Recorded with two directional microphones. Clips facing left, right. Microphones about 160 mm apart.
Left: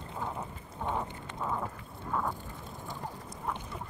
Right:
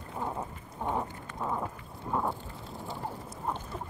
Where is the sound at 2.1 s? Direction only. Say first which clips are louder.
Right 2 dB; 20° right (ahead or behind).